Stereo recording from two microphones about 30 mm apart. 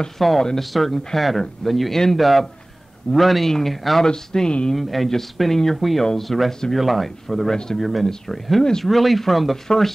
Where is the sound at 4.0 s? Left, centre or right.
Left.